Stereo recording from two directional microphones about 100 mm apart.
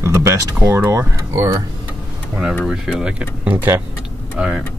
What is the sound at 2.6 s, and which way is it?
Speech, 5° right (ahead or behind).